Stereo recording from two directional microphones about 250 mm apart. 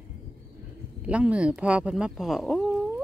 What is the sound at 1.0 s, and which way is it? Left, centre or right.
Speech, centre.